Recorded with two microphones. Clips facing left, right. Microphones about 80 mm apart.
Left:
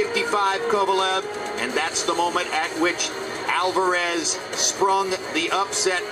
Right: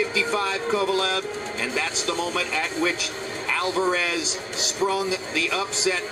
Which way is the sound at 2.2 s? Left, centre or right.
Left.